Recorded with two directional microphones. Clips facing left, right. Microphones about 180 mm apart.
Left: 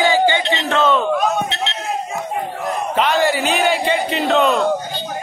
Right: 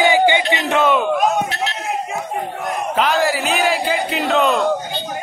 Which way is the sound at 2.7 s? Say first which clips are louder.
Even; centre (ahead or behind).